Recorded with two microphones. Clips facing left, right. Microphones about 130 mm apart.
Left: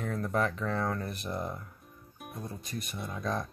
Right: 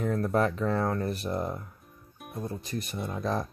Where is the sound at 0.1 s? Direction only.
35° right (ahead or behind).